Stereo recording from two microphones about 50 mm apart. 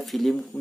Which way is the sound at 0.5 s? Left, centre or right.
Left.